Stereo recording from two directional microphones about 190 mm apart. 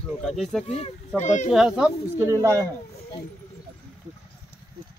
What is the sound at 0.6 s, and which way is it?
Speech, 35° left (ahead or behind).